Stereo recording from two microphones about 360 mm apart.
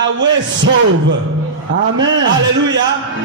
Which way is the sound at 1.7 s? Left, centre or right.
Right.